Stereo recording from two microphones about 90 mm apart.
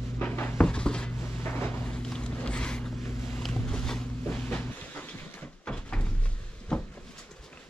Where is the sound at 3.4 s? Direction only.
5° left (ahead or behind).